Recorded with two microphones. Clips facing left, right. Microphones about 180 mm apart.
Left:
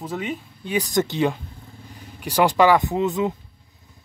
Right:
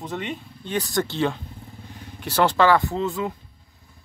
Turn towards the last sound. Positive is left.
turn(degrees=20)  # may be behind; listen again after turning